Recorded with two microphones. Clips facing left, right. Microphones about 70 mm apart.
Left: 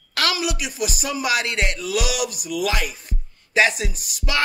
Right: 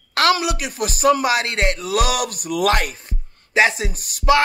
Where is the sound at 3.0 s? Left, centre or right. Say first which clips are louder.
Even; right.